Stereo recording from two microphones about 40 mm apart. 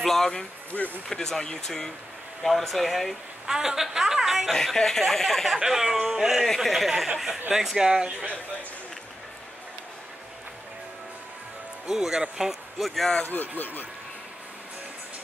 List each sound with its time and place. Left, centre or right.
0.0 s speech: centre
3.4 s speech: centre
4.5 s speech: centre
5.6 s speech: centre
11.9 s speech: centre
13.2 s speech: left